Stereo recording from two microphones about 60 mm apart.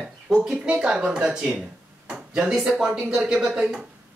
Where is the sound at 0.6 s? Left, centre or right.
Centre.